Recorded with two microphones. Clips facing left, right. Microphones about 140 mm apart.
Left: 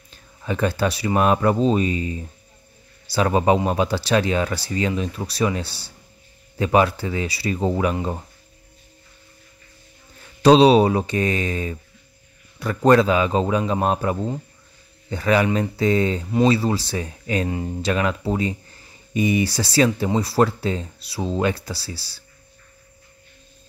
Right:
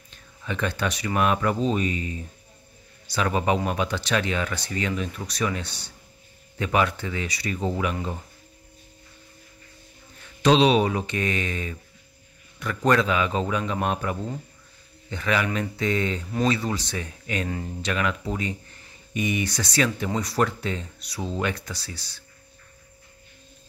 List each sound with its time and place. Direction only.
0.1 s speech: 35° left (ahead or behind)
10.4 s speech: 35° left (ahead or behind)